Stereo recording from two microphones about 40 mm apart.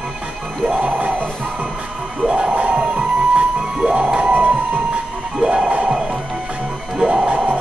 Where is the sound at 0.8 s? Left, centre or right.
Right.